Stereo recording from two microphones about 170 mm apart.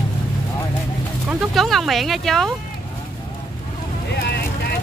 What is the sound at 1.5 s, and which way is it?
Speech, centre (ahead or behind).